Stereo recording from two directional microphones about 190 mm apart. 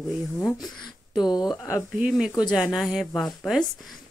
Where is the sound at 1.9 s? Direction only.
5° right (ahead or behind).